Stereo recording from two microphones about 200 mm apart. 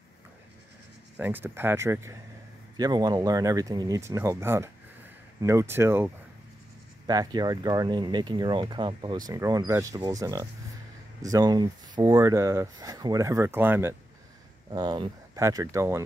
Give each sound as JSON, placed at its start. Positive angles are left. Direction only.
{"t": 1.1, "sound": "speech", "side_deg": -10}
{"t": 14.7, "sound": "speech", "side_deg": -20}